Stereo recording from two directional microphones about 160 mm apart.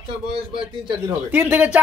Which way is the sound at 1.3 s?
10° right (ahead or behind).